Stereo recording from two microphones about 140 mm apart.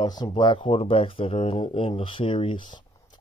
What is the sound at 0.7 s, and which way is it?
Speech, 45° left (ahead or behind).